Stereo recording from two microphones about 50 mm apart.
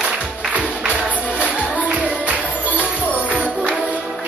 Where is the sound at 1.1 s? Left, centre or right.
Right.